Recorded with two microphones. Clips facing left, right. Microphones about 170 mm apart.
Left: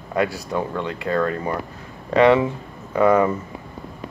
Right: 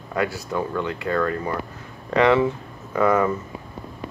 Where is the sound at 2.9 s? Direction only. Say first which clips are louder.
Left 3 dB; 15° left (ahead or behind).